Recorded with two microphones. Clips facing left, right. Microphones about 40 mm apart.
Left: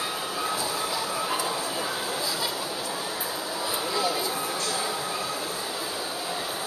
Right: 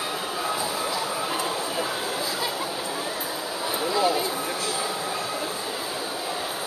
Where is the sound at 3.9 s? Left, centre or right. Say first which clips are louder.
Right 6 dB; centre.